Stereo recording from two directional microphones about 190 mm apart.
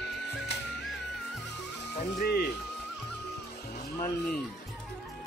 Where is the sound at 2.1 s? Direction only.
55° left (ahead or behind).